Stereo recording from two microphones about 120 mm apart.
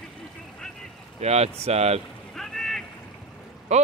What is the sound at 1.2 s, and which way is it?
Speech, 60° right (ahead or behind).